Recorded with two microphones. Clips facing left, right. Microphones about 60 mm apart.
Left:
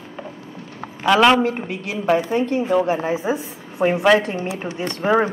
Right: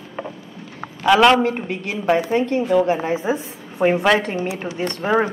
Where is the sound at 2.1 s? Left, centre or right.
Centre.